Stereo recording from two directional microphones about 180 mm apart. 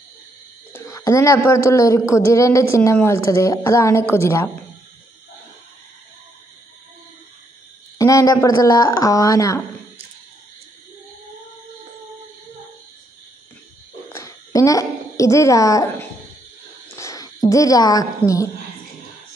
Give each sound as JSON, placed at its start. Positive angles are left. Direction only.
{"t": 0.7, "sound": "a man's voice", "side_deg": 15}
{"t": 8.0, "sound": "speech", "side_deg": 20}
{"t": 14.1, "sound": "a woman's voice", "side_deg": 20}